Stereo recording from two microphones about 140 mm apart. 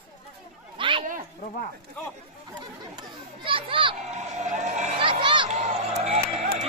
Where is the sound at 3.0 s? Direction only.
40° right (ahead or behind).